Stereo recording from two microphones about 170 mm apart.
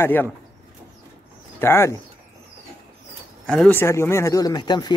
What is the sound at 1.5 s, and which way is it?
Speech, 15° left (ahead or behind).